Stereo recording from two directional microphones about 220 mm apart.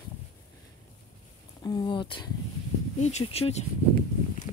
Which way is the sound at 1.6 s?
20° left (ahead or behind).